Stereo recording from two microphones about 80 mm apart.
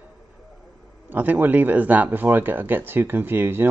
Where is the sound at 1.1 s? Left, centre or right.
Right.